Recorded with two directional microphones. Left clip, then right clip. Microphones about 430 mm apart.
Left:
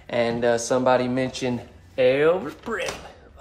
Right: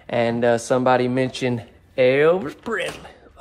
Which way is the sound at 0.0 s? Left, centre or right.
Centre.